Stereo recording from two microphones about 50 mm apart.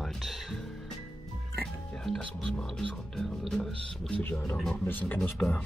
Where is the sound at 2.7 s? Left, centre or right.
Centre.